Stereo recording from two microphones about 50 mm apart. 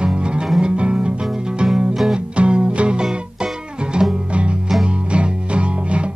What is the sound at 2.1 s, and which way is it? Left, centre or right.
Music, centre.